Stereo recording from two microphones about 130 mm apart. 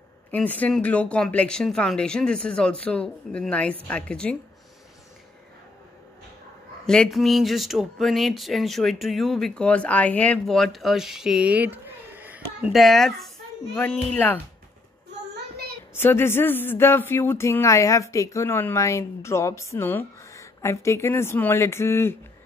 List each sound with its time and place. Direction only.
0.3 s speech: 10° left (ahead or behind)
6.9 s speech: 5° left (ahead or behind); by 12.7 s 10° right (ahead or behind)
12.7 s speech: centre (ahead or behind)
13.7 s speech: 15° left (ahead or behind)
15.9 s speech: 15° left (ahead or behind)